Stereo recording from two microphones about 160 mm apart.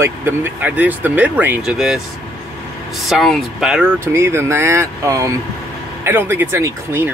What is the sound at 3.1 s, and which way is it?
Speech, centre (ahead or behind).